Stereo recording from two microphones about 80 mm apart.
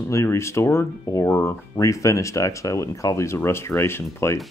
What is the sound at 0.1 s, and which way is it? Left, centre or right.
Speech, left.